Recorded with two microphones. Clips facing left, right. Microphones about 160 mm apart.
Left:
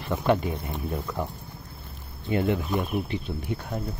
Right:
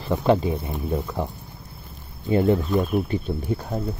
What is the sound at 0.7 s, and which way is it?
Speech, 10° right (ahead or behind).